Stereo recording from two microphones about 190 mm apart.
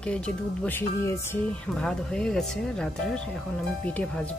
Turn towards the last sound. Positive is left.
turn(degrees=5)  # may be behind; listen again after turning